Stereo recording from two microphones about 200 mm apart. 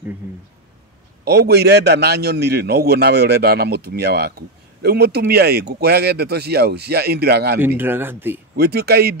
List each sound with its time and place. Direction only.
1.2 s a man's voice: 55° right (ahead or behind)
7.6 s speech: 10° right (ahead or behind)
8.5 s a man's voice: 55° right (ahead or behind)